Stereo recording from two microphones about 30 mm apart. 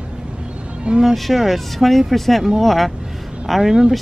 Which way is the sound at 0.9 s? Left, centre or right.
Right.